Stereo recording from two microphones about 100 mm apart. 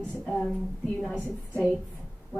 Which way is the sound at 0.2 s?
5° left (ahead or behind).